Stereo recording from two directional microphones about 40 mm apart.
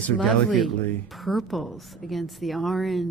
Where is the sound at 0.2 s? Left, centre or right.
Centre.